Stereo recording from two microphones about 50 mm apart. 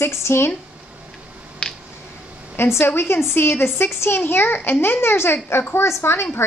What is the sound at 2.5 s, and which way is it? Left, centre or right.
Speech, left.